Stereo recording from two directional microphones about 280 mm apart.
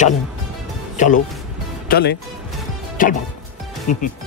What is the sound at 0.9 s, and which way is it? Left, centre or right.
Speech, left.